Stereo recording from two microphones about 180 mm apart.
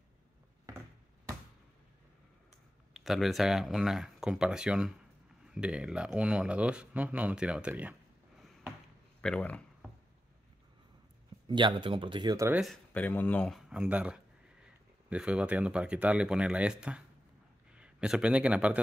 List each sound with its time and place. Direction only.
2.9 s speech: centre (ahead or behind)
9.2 s speech: 5° left (ahead or behind)
11.4 s speech: 25° right (ahead or behind)
12.9 s a man's voice: 10° left (ahead or behind); by 18.8 s 5° right (ahead or behind)